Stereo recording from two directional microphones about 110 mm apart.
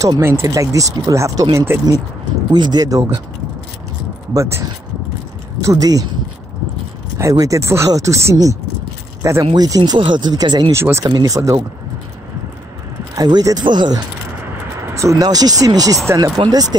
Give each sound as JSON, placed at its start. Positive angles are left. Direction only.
{"t": 0.0, "sound": "speech", "side_deg": -25}
{"t": 2.5, "sound": "speech", "side_deg": -40}
{"t": 4.3, "sound": "speech", "side_deg": -30}
{"t": 7.2, "sound": "speech", "side_deg": -30}
{"t": 10.7, "sound": "speech", "side_deg": -25}
{"t": 13.1, "sound": "speech", "side_deg": -35}
{"t": 14.8, "sound": "speech", "side_deg": -25}